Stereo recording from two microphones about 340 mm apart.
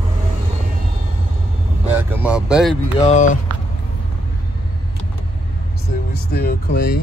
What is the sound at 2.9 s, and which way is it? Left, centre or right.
Speech, centre.